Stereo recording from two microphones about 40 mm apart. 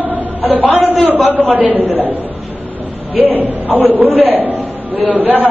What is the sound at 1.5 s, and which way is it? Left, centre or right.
A man's voice, right.